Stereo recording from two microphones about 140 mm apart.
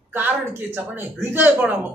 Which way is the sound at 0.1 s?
15° right (ahead or behind).